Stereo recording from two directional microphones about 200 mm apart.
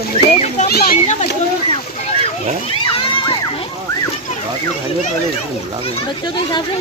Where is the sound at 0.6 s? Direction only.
50° left (ahead or behind).